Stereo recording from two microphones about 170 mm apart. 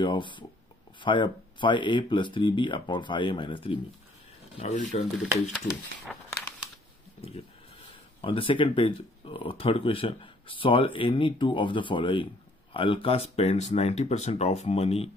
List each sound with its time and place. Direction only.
0.0 s speech: 30° left (ahead or behind)
5.2 s speech: centre (ahead or behind)
7.2 s speech: 35° left (ahead or behind)